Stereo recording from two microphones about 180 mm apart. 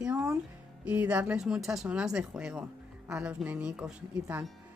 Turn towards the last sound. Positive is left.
turn(degrees=-5)  # may be behind; listen again after turning